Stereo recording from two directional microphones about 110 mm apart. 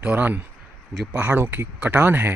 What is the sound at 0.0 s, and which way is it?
Speech, 15° right (ahead or behind).